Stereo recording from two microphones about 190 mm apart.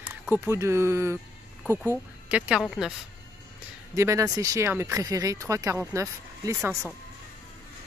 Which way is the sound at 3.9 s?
15° right (ahead or behind).